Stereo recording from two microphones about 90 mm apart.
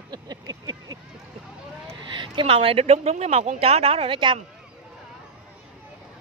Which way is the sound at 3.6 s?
90° right.